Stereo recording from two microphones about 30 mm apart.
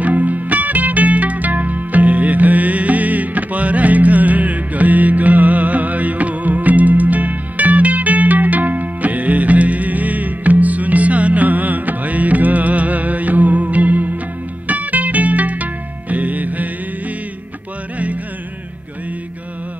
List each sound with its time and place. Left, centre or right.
0.0 s music: right